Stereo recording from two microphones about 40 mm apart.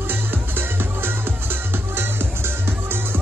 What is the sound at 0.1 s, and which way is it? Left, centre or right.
Music, right.